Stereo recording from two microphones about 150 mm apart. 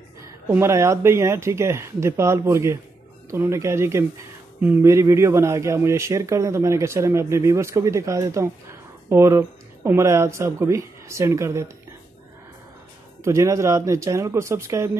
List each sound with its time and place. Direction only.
0.2 s speech: 15° right (ahead or behind)
13.2 s speech: 20° right (ahead or behind)